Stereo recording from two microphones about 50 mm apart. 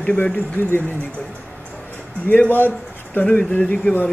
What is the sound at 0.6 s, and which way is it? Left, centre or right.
Speech, left.